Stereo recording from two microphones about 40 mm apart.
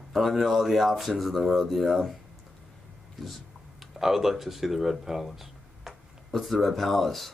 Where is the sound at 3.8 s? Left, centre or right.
Centre.